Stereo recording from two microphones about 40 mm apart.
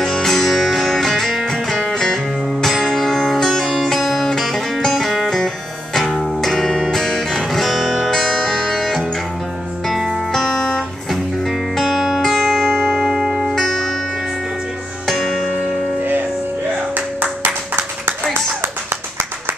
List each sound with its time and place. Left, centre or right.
0.0 s music: centre
5.9 s music: centre
6.4 s music: centre
8.2 s music: centre
10.4 s music: centre
11.7 s music: centre
13.6 s music: centre
15.0 s music: centre
16.0 s music: right
16.9 s clapping: right